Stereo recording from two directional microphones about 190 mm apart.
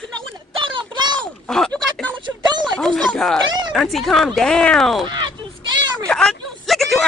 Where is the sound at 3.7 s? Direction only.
Centre (ahead or behind).